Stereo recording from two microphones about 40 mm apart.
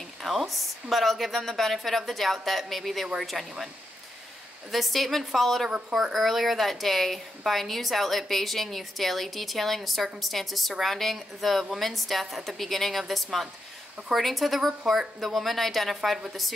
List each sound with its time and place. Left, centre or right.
0.2 s a woman's voice: centre